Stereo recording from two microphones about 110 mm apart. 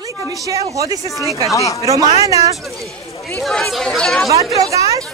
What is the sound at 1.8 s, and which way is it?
Speech, 30° right (ahead or behind).